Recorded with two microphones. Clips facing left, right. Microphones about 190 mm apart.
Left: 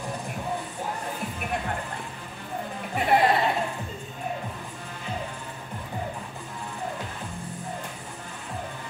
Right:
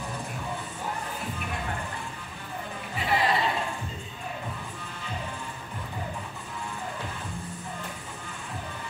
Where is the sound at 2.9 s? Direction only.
55° left (ahead or behind).